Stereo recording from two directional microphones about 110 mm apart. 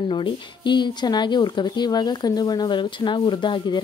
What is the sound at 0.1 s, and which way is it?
Speech, 45° left (ahead or behind).